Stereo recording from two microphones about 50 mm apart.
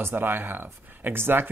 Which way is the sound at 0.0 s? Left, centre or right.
Right.